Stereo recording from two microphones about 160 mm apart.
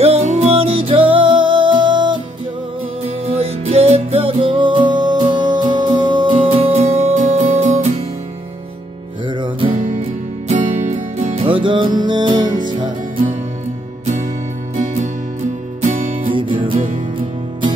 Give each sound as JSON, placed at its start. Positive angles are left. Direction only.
{"t": 0.0, "sound": "music", "side_deg": -40}
{"t": 3.3, "sound": "music", "side_deg": -40}
{"t": 9.3, "sound": "music", "side_deg": -30}
{"t": 9.7, "sound": "music", "side_deg": -55}
{"t": 15.8, "sound": "music", "side_deg": -45}